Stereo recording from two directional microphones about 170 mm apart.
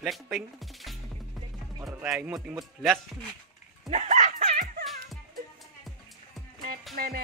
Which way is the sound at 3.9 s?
45° right (ahead or behind).